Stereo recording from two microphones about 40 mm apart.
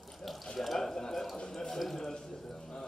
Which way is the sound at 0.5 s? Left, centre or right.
Centre.